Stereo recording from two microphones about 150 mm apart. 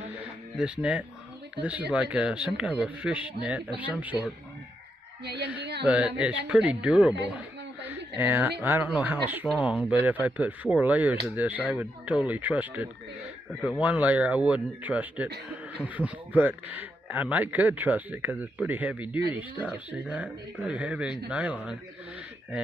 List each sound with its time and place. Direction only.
0.6 s speech: 10° right (ahead or behind)
5.4 s a sound: 10° right (ahead or behind)
5.9 s speech: 10° right (ahead or behind)